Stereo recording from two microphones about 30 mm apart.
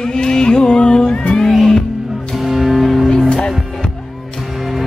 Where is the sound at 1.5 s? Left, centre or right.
Centre.